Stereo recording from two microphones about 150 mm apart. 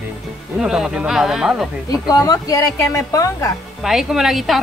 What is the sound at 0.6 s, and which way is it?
A woman's voice, 5° right (ahead or behind).